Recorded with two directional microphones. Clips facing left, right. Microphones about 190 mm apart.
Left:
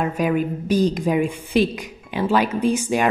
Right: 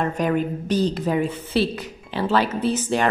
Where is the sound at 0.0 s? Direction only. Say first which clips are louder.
Left 1 dB; 10° left (ahead or behind).